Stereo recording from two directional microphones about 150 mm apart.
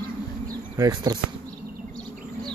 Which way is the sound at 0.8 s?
25° right (ahead or behind).